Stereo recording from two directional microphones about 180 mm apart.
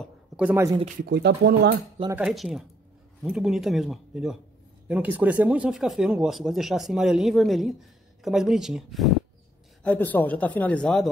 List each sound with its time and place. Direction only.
0.4 s speech: 10° right (ahead or behind)
1.0 s speech: 65° right (ahead or behind)
2.2 s speech: centre (ahead or behind)